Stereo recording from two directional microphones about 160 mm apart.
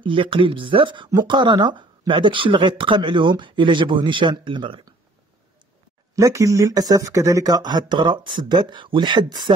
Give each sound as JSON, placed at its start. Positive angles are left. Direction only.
{"t": 0.0, "sound": "speech", "side_deg": -30}
{"t": 6.1, "sound": "speech", "side_deg": -20}